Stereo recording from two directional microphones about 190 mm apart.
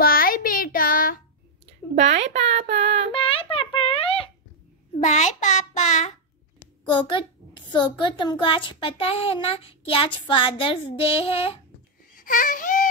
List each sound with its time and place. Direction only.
0.0 s child singing: 50° left (ahead or behind)
2.0 s a sound: 35° right (ahead or behind)
3.1 s a sound: 30° left (ahead or behind)
5.0 s child singing: 40° left (ahead or behind)
6.8 s a child's voice: 25° left (ahead or behind)
12.1 s speech: 45° left (ahead or behind)